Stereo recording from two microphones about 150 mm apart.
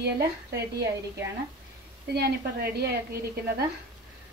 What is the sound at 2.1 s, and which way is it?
A woman's voice, 90° right.